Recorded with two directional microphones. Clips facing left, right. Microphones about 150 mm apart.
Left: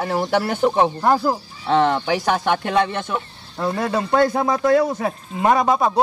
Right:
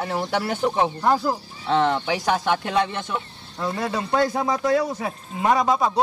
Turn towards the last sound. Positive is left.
turn(degrees=55)  # may be behind; listen again after turning